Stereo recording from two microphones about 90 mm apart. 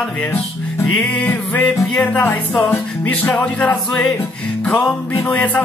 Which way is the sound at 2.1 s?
20° left (ahead or behind).